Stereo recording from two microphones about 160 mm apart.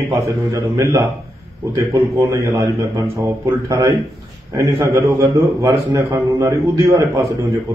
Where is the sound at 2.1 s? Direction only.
20° right (ahead or behind).